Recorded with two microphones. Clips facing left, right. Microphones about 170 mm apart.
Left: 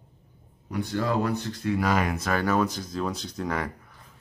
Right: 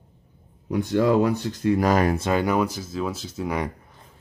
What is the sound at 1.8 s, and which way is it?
Speech, 40° right (ahead or behind).